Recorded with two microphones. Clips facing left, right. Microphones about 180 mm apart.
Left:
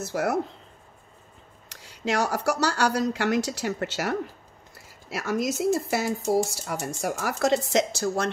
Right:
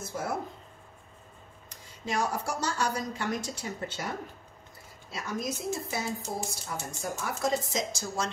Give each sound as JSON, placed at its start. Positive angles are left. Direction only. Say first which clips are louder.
{"t": 0.0, "sound": "speech", "louder": "left 7 dB", "side_deg": 75}
{"t": 1.7, "sound": "speech", "louder": "left 7 dB", "side_deg": 80}